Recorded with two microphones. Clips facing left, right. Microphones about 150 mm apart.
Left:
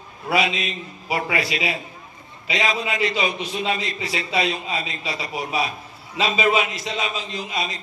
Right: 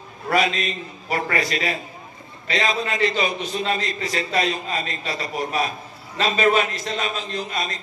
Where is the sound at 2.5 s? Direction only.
35° right (ahead or behind).